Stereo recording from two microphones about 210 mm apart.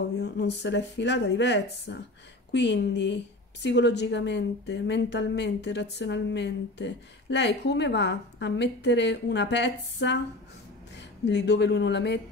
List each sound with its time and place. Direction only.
0.2 s a woman's voice: 55° left (ahead or behind)